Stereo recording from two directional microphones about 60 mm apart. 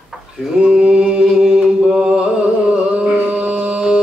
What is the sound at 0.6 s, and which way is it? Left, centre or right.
Mantra, centre.